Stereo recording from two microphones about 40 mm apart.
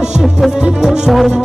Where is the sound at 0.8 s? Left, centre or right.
Centre.